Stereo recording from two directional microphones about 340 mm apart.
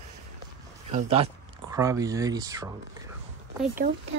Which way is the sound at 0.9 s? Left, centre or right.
Centre.